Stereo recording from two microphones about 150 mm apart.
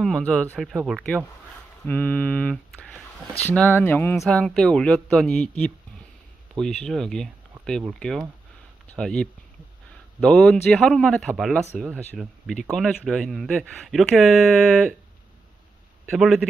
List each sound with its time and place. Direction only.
0.0 s speech: 5° left (ahead or behind)
1.9 s speech: 10° left (ahead or behind)
6.6 s speech: 5° left (ahead or behind)
16.1 s speech: centre (ahead or behind)